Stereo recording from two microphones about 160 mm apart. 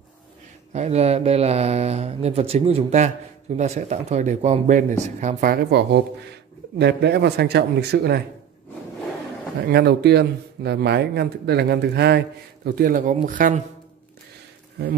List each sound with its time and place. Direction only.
0.7 s speech: 40° right (ahead or behind); by 8.2 s 85° right
9.7 s speech: 90° right
12.6 s speech: 65° right (ahead or behind)